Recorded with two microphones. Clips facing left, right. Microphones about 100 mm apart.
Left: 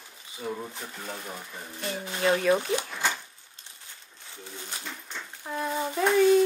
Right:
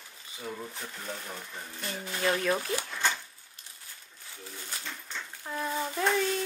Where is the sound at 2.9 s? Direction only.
10° left (ahead or behind).